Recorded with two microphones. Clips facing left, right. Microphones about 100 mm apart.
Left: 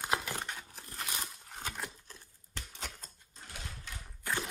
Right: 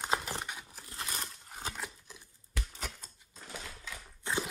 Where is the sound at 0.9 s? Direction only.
40° right (ahead or behind).